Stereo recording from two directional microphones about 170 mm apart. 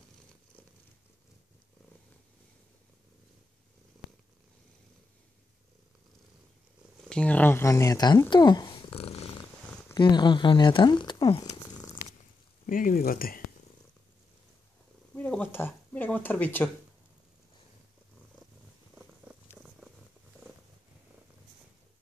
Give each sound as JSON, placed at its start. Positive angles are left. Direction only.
{"t": 7.1, "sound": "speech", "side_deg": 5}
{"t": 12.6, "sound": "speech", "side_deg": 55}
{"t": 15.1, "sound": "a sound", "side_deg": 5}